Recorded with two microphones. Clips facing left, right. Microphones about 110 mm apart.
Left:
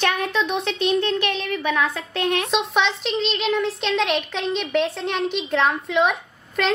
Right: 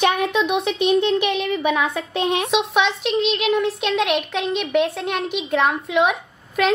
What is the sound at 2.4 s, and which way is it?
Speech, 5° right (ahead or behind).